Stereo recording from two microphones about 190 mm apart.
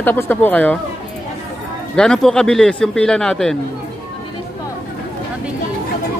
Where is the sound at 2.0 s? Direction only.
5° left (ahead or behind).